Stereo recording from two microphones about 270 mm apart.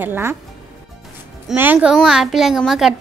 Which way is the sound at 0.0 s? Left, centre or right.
Centre.